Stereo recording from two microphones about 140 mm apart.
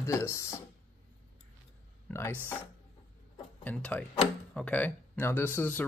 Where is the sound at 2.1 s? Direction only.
20° left (ahead or behind).